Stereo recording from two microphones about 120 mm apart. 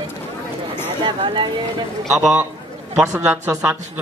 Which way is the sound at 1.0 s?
40° right (ahead or behind).